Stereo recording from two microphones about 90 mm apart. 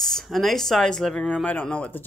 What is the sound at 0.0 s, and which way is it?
A woman's voice, 5° left (ahead or behind).